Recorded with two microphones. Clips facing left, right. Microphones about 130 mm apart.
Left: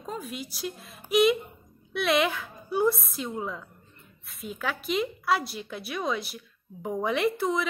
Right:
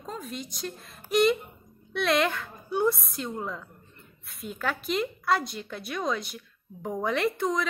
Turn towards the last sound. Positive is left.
turn(degrees=0)  # may be behind; listen again after turning